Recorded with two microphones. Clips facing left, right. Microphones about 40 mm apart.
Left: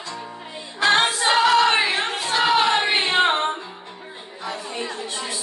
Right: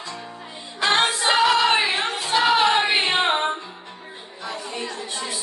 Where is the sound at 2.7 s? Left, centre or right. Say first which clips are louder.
Even; centre.